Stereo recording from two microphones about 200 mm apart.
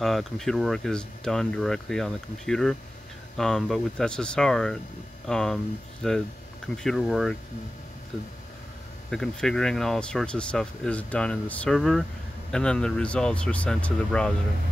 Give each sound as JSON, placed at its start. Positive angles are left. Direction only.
{"t": 0.0, "sound": "speech", "side_deg": 0}
{"t": 9.1, "sound": "speech", "side_deg": 0}